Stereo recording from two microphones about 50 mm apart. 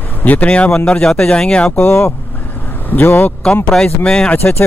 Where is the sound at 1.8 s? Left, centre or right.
Left.